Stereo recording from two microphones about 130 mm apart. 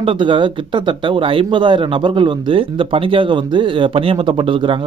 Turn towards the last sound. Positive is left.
turn(degrees=-40)  # may be behind; listen again after turning